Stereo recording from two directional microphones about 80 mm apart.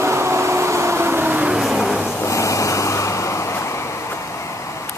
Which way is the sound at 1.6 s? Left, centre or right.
Centre.